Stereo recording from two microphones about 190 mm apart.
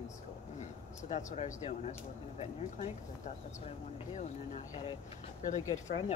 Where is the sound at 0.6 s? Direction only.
40° left (ahead or behind).